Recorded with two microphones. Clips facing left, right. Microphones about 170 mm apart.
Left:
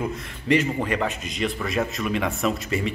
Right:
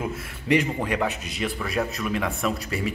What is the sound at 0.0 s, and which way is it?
A man's voice, 10° right (ahead or behind).